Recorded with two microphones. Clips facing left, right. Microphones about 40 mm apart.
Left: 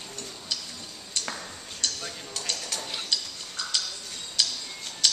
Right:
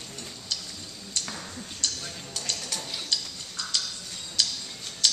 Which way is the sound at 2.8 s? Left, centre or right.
Left.